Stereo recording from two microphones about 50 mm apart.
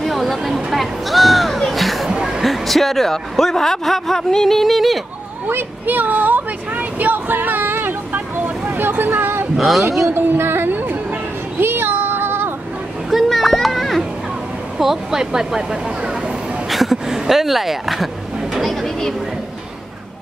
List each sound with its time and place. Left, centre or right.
0.0 s music: centre
2.0 s a sound: centre
2.4 s a man's voice: centre
5.5 s speech: right
8.6 s a sound: right
9.6 s a man's voice: centre
9.8 s speech: right
10.1 s music: right
11.6 s child singing: right
13.1 s a sound: centre
14.8 s speech: centre
16.6 s a sound: centre